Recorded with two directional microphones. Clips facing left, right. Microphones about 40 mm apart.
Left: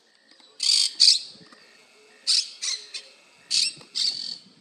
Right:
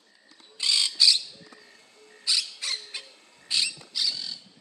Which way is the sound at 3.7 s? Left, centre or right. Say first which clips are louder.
Even; centre.